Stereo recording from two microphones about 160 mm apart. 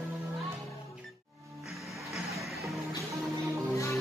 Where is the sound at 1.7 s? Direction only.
Centre (ahead or behind).